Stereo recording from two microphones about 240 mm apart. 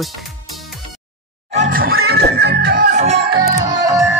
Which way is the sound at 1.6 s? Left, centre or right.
Right.